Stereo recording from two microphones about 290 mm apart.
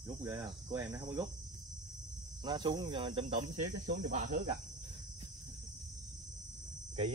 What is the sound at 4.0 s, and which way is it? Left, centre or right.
Cricket, right.